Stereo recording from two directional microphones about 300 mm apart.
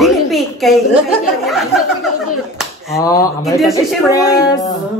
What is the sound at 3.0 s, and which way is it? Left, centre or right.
A man's voice, centre.